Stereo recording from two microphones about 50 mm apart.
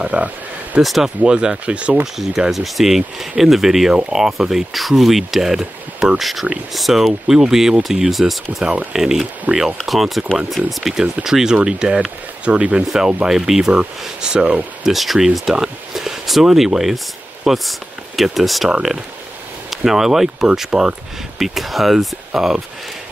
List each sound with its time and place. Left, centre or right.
0.0 s speech: right
0.8 s speech: centre
1.2 s speech: centre
2.5 s speech: centre; by 12.8 s right
12.8 s speech: centre
14.9 s speech: centre